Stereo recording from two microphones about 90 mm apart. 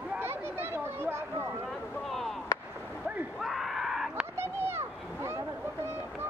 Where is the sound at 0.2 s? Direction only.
25° right (ahead or behind).